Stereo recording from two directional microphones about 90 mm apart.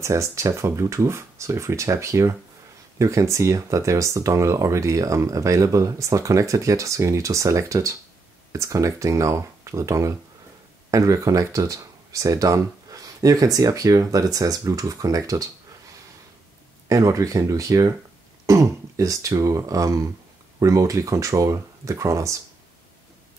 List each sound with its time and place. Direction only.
0.0 s speech: 35° right (ahead or behind)
16.9 s speech: 40° right (ahead or behind)